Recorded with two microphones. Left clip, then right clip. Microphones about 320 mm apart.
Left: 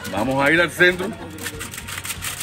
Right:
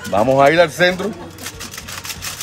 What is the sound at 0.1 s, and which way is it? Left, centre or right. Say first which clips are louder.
Speech: right 6 dB; right.